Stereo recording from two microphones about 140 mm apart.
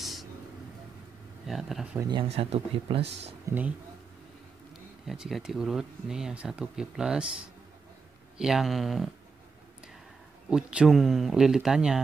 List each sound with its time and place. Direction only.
0.0 s a sound: centre (ahead or behind)
1.4 s speech: centre (ahead or behind)
2.2 s speech: 45° right (ahead or behind)
3.4 s speech: 15° right (ahead or behind)
4.7 s speech: 5° right (ahead or behind)
10.5 s speech: 5° right (ahead or behind)